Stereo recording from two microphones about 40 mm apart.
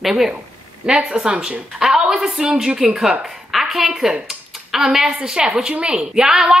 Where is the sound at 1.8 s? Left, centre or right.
Centre.